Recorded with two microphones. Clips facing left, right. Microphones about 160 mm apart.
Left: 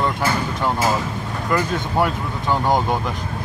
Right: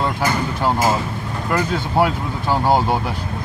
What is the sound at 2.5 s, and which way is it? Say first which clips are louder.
Speech: right 2 dB; 10° right (ahead or behind).